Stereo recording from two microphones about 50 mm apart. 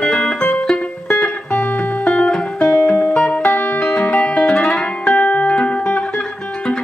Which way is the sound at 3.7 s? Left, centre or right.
Left.